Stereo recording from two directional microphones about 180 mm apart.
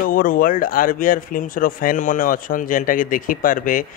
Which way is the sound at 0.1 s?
50° left (ahead or behind).